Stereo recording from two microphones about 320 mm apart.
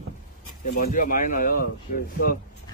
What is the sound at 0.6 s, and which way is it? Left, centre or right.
Speech, left.